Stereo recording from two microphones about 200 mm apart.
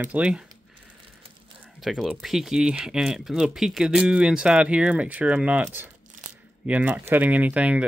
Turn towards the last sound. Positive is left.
turn(degrees=-5)  # may be behind; listen again after turning